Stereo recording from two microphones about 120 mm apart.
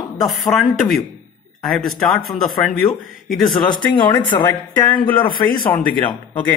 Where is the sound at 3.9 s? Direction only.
40° left (ahead or behind).